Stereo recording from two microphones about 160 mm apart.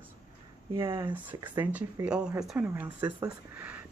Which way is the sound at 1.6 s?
10° right (ahead or behind).